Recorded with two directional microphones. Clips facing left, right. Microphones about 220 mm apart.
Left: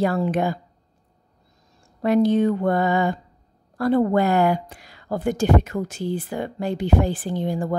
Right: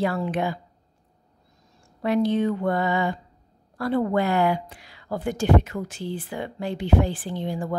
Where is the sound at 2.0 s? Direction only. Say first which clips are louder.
Left 4 dB; 45° left (ahead or behind).